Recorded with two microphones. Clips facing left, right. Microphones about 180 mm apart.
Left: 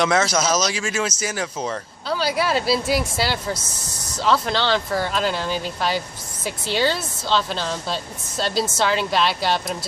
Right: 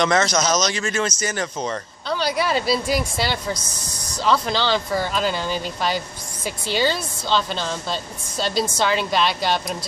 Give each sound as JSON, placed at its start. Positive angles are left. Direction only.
{"t": 0.0, "sound": "speech", "side_deg": 5}
{"t": 3.5, "sound": "speech", "side_deg": 25}
{"t": 4.2, "sound": "speech", "side_deg": 0}